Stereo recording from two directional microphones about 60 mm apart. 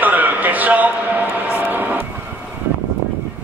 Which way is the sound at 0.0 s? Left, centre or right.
Right.